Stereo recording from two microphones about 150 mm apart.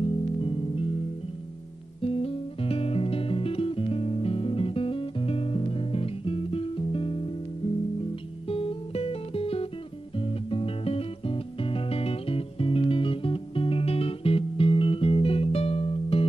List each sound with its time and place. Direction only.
0.0 s music: 35° left (ahead or behind)
2.0 s music: 40° left (ahead or behind)
8.5 s music: 40° left (ahead or behind)